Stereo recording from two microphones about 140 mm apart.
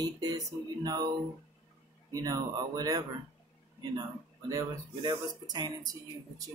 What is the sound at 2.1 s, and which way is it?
Speech, 25° right (ahead or behind).